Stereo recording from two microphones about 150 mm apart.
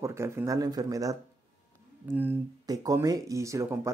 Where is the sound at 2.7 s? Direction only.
25° right (ahead or behind).